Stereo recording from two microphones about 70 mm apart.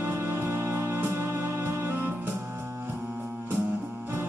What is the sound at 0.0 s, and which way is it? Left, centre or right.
Music, right.